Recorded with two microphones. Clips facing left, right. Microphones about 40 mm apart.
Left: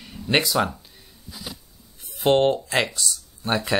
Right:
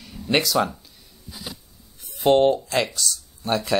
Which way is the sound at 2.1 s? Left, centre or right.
Left.